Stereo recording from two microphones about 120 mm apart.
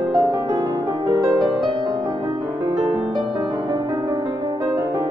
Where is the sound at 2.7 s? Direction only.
35° right (ahead or behind).